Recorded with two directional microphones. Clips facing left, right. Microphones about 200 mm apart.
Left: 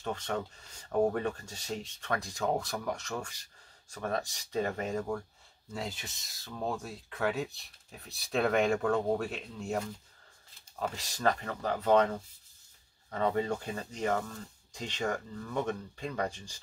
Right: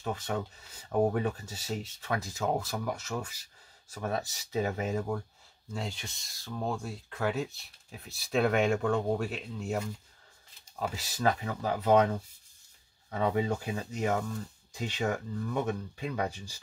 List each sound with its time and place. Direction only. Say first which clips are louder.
0.0 s speech: right 1 dB; 5° right (ahead or behind)
13.1 s speech: right 1 dB; 10° right (ahead or behind)